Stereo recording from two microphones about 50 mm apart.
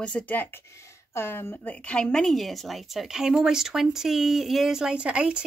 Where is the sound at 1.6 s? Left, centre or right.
Left.